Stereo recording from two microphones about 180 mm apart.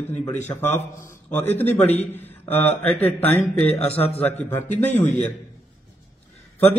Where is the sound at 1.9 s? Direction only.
35° left (ahead or behind).